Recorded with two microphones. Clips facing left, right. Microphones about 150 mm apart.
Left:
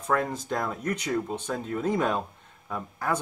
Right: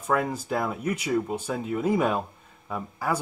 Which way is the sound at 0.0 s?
5° right (ahead or behind).